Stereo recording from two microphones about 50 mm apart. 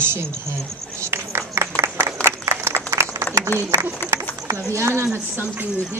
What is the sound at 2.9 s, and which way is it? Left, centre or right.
Applause, right.